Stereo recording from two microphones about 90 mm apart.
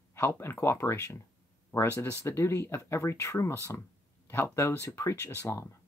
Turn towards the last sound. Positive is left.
turn(degrees=35)  # may be behind; listen again after turning